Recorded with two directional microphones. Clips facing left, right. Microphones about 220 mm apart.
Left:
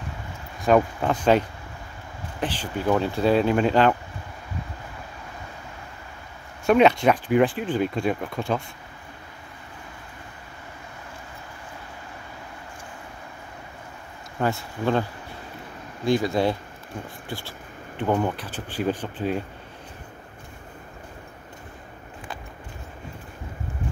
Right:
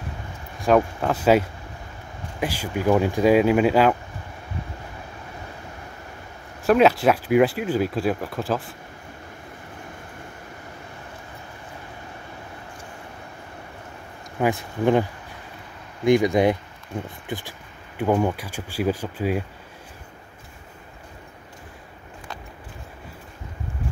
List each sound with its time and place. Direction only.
0.6 s speech: centre (ahead or behind)
2.4 s speech: 10° right (ahead or behind)
6.6 s speech: centre (ahead or behind)
14.4 s speech: 15° right (ahead or behind)
16.1 s speech: 15° right (ahead or behind)